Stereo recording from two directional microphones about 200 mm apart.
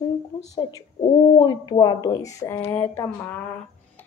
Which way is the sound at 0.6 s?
20° left (ahead or behind).